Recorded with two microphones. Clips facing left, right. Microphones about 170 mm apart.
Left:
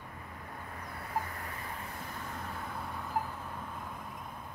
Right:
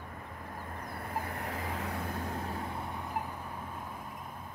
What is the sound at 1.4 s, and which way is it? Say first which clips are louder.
Vehicle: right 6 dB; 90° right.